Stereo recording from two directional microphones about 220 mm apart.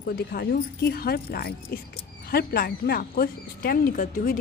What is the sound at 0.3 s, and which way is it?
Speech, 45° left (ahead or behind).